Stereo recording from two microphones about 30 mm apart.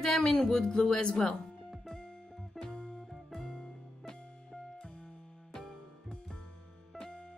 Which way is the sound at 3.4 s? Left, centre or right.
Left.